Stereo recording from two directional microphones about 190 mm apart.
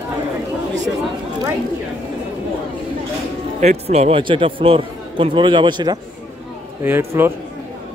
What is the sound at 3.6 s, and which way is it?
A man's voice, 35° right (ahead or behind).